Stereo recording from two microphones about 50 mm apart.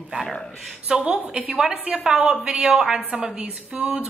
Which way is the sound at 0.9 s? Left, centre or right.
Centre.